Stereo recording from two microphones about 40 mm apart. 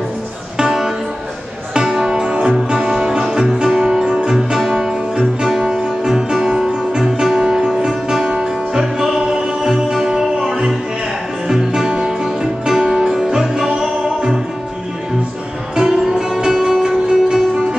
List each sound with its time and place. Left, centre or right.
0.6 s music: centre
15.7 s music: centre